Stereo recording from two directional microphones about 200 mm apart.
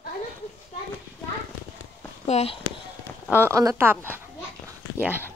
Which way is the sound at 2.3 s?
30° left (ahead or behind).